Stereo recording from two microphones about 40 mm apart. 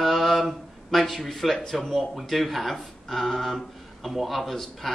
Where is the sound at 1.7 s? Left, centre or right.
Centre.